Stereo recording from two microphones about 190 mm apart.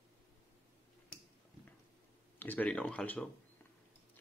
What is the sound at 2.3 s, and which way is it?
Speech, 10° left (ahead or behind).